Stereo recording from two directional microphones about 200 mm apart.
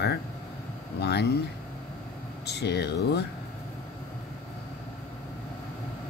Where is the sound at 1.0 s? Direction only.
55° left (ahead or behind).